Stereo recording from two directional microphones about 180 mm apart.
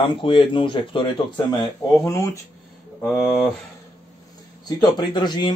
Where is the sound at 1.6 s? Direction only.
15° left (ahead or behind).